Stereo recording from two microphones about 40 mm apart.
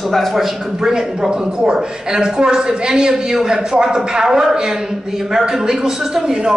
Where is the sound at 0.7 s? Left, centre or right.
Centre.